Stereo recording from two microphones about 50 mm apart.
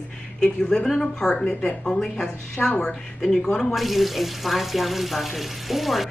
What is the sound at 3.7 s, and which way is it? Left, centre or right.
Speech, centre.